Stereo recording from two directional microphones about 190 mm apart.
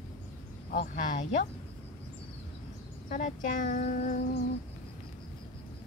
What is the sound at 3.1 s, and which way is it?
Speech, 40° left (ahead or behind).